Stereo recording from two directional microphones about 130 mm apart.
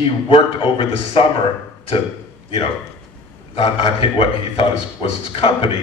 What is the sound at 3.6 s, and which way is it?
A man's voice, 45° left (ahead or behind).